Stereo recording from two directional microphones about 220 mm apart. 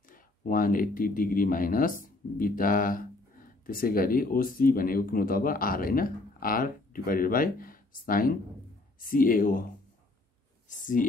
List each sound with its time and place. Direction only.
0.1 s speech: 40° left (ahead or behind)
10.7 s speech: 35° left (ahead or behind)